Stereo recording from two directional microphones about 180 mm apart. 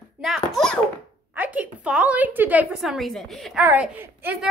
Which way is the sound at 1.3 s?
10° right (ahead or behind).